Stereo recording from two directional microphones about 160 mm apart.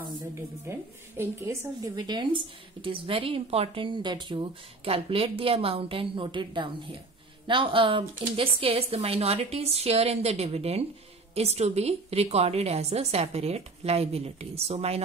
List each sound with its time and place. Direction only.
0.3 s speech: 15° right (ahead or behind); by 15.0 s 40° right (ahead or behind)